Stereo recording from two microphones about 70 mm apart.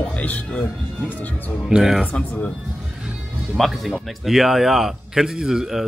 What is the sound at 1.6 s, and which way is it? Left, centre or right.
Speech, centre.